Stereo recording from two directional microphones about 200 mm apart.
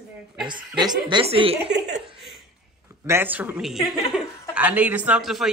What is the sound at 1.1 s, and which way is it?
Speech, 25° right (ahead or behind).